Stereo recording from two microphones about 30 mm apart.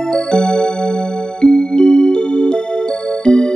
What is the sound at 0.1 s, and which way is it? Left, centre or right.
Music, left.